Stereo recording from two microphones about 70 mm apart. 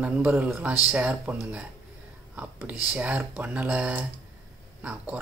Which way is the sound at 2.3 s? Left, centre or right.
Right.